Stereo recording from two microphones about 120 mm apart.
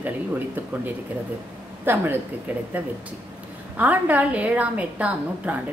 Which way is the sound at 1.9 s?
20° right (ahead or behind).